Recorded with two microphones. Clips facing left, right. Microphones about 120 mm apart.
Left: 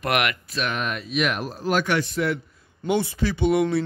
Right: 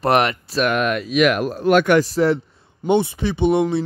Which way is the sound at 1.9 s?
35° right (ahead or behind).